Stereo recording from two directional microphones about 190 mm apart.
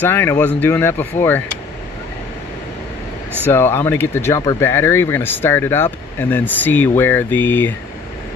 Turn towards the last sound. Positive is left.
turn(degrees=10)  # may be behind; listen again after turning